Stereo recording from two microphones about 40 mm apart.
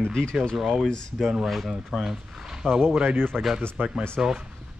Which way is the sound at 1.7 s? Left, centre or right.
Centre.